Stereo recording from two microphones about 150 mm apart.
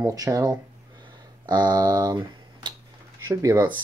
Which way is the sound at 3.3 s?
20° right (ahead or behind).